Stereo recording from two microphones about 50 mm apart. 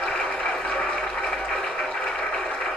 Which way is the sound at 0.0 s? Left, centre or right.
Centre.